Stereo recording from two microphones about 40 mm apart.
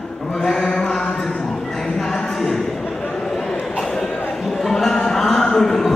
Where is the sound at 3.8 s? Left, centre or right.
Centre.